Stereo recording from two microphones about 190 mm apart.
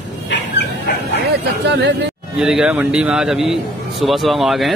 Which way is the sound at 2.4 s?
5° right (ahead or behind).